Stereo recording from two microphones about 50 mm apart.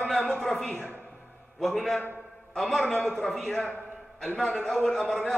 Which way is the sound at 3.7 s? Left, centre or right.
Right.